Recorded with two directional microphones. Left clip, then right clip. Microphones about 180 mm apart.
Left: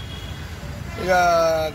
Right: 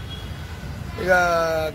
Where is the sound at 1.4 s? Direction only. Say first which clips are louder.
Left 3 dB; 5° right (ahead or behind).